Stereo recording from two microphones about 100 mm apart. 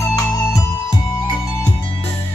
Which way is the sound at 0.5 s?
40° left (ahead or behind).